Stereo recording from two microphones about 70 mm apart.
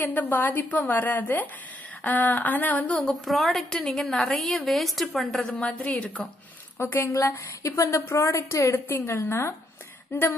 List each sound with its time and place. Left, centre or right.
0.0 s a woman's voice: left
3.0 s a woman's voice: centre
5.4 s a woman's voice: centre
6.8 s a woman's voice: left
8.8 s a woman's voice: left